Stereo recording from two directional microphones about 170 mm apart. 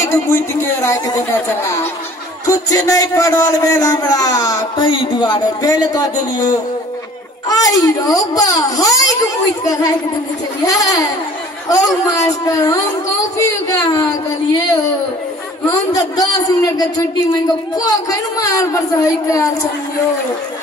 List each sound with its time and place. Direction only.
0.0 s a woman's voice: 15° left (ahead or behind)
2.4 s a man's voice: 20° left (ahead or behind)
15.9 s a man's voice: 20° left (ahead or behind)